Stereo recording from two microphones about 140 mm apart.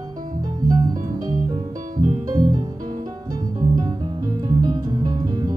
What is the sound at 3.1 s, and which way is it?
Music, 25° right (ahead or behind).